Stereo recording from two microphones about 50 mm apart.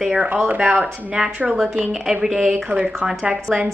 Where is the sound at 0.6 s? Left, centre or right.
Right.